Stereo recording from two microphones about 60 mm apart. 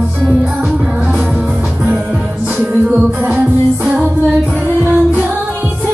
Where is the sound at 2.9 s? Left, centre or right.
Right.